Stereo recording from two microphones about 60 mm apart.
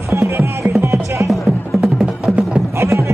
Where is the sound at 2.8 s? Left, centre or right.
Right.